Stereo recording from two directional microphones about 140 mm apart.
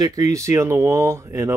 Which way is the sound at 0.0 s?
25° right (ahead or behind).